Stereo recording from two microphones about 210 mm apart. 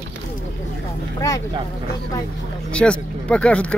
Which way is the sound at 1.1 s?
15° left (ahead or behind).